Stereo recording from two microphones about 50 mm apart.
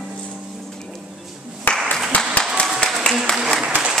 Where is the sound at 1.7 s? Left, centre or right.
Left.